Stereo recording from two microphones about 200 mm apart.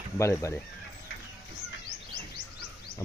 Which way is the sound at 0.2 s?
15° left (ahead or behind).